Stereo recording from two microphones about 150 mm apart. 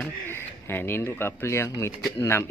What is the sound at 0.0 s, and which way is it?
Speech, 15° left (ahead or behind).